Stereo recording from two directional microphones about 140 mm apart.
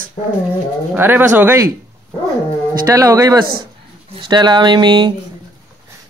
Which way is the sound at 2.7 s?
25° right (ahead or behind).